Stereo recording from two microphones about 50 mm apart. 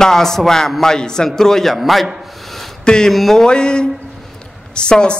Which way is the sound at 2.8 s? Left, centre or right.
Centre.